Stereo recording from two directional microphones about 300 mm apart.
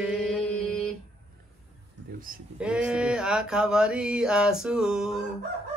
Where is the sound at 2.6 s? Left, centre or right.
Centre.